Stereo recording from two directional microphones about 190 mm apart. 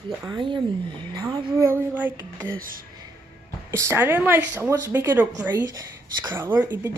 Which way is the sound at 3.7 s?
15° right (ahead or behind).